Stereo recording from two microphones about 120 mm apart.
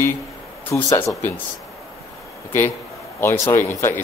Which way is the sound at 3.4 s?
20° left (ahead or behind).